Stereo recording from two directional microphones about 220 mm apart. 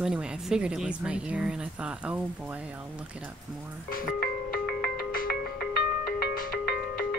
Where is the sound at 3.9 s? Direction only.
40° left (ahead or behind).